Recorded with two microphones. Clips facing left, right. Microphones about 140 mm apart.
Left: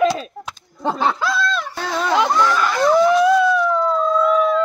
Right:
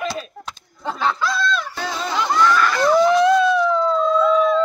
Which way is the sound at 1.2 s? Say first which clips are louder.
Left 1 dB; 5° left (ahead or behind).